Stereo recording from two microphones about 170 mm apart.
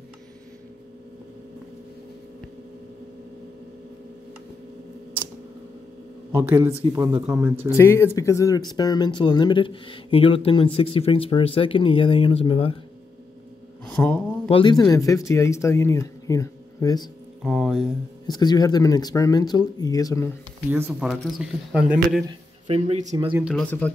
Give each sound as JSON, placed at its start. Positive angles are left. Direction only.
{"t": 6.3, "sound": "speech", "side_deg": -15}
{"t": 7.7, "sound": "speech", "side_deg": 15}
{"t": 13.8, "sound": "a sound", "side_deg": 5}
{"t": 14.5, "sound": "speech", "side_deg": 25}
{"t": 17.4, "sound": "speech", "side_deg": 0}
{"t": 18.2, "sound": "speech", "side_deg": 25}
{"t": 20.7, "sound": "speech", "side_deg": -15}
{"t": 21.1, "sound": "speech", "side_deg": 0}
{"t": 22.7, "sound": "speech", "side_deg": -40}
{"t": 23.1, "sound": "speech", "side_deg": -25}
{"t": 23.4, "sound": "speech", "side_deg": 5}